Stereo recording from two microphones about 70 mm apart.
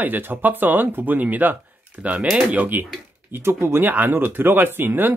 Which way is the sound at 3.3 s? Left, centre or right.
Right.